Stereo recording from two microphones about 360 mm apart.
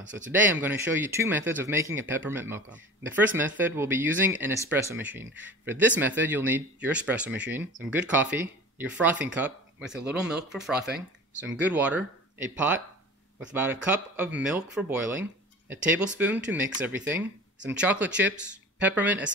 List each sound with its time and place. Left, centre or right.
0.3 s speech: centre
13.4 s speech: centre